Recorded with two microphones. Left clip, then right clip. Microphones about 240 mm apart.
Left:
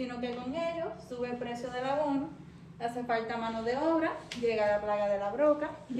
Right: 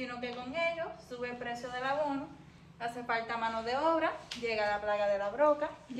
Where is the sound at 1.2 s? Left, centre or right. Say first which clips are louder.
Left 1 dB; centre.